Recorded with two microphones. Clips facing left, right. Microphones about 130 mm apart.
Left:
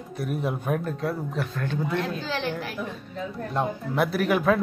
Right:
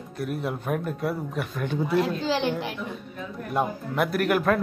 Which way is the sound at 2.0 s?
30° right (ahead or behind).